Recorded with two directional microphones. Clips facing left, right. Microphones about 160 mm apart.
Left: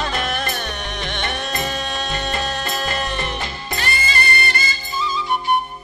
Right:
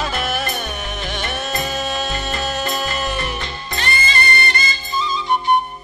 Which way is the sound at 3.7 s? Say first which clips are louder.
Right 2 dB; 25° right (ahead or behind).